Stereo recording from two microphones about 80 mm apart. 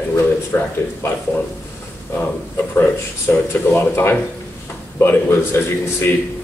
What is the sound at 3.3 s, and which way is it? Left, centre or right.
Speech, left.